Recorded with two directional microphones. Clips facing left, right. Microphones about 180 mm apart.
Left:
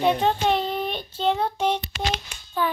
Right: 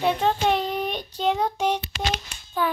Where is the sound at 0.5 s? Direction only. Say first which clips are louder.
Even; 15° right (ahead or behind).